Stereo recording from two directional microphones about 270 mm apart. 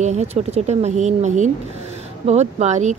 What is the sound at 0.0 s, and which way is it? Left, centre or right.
Speech, right.